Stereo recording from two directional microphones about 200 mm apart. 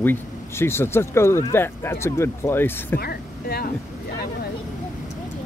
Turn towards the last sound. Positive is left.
turn(degrees=50)  # may be behind; listen again after turning